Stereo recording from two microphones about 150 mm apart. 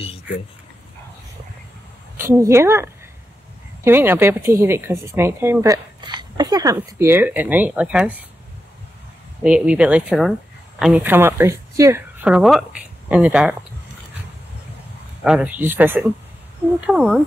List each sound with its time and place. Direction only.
2.1 s speech: 20° right (ahead or behind)
9.4 s speech: 10° right (ahead or behind)
12.2 s speech: 5° right (ahead or behind)
15.2 s speech: 10° right (ahead or behind)